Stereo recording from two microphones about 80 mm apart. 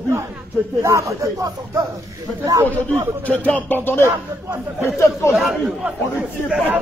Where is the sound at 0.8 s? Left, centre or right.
Right.